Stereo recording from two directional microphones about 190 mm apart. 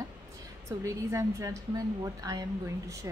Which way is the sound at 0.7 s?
15° right (ahead or behind).